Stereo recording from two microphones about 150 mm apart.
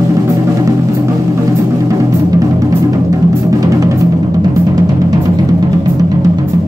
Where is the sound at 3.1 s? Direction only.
25° right (ahead or behind).